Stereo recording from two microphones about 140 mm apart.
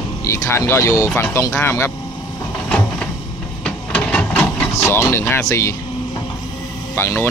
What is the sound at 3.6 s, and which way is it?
Printer, 5° left (ahead or behind).